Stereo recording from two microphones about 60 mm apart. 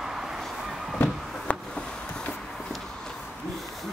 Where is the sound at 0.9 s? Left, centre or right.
Left.